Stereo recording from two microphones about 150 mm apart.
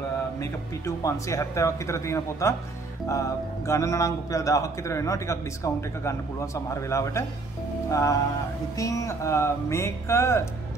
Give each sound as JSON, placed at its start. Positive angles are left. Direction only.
{"t": 0.4, "sound": "a man's voice", "side_deg": 20}